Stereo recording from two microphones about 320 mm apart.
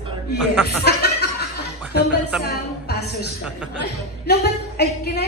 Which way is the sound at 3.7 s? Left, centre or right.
Left.